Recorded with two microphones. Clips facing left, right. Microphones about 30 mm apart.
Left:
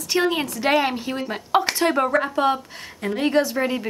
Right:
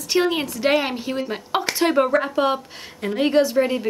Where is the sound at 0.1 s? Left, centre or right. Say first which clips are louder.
Right 1 dB; centre.